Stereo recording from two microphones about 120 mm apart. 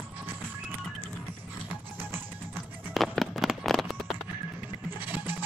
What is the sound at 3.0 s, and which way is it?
Fireworks, centre (ahead or behind).